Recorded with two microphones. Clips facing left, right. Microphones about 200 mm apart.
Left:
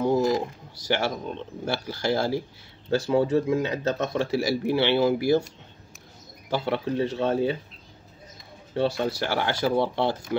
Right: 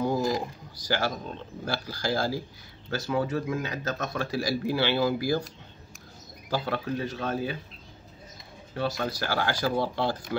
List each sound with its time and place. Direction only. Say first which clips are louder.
0.0 s speech: left 4 dB; 25° left (ahead or behind)
6.5 s speech: left 3 dB; 25° left (ahead or behind)
8.7 s speech: left 5 dB; 30° left (ahead or behind)